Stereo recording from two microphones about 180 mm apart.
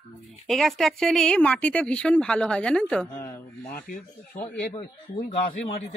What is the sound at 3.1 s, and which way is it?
Speech, 55° left (ahead or behind).